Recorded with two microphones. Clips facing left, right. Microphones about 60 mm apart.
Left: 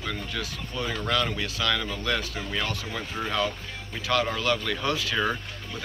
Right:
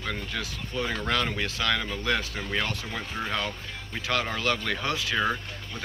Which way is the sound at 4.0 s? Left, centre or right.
Right.